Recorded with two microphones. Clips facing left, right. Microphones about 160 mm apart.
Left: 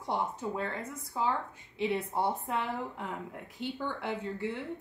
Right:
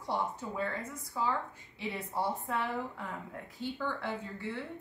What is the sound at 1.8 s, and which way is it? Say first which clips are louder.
Speech: left 5 dB; 20° left (ahead or behind).